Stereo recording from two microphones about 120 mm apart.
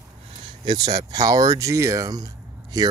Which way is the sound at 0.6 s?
35° right (ahead or behind).